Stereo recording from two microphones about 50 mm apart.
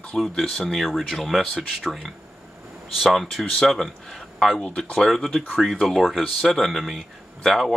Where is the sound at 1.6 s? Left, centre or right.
Centre.